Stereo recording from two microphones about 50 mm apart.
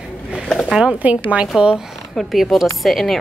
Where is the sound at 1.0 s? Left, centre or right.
Right.